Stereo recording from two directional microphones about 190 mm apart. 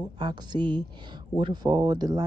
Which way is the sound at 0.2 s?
20° right (ahead or behind).